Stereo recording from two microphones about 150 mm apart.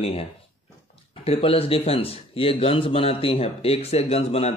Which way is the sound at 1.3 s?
40° left (ahead or behind).